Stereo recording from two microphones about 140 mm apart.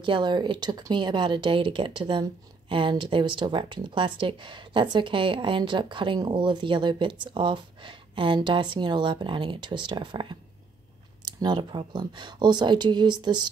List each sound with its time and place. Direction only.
0.0 s speech: 35° right (ahead or behind)